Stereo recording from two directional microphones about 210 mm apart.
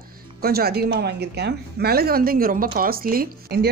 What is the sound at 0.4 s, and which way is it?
A woman's voice, 45° right (ahead or behind).